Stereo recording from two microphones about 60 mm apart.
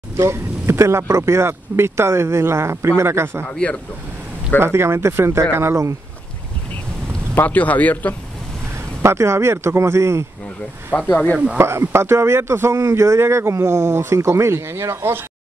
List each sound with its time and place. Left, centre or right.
0.2 s speech: right
4.6 s speech: right
7.3 s speech: left
9.0 s speech: right
10.9 s speech: left
11.5 s speech: right